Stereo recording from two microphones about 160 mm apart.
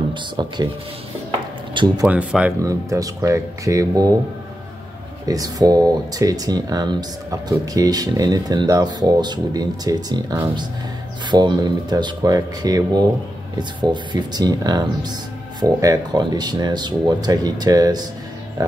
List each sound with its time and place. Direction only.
0.1 s speech: 25° right (ahead or behind)
1.7 s speech: 30° right (ahead or behind)
2.0 s speech: 10° right (ahead or behind)
2.6 s speech: 20° right (ahead or behind)
5.2 s speech: 25° right (ahead or behind)
18.6 s music: 20° right (ahead or behind)